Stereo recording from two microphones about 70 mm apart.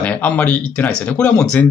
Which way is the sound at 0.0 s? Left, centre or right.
Left.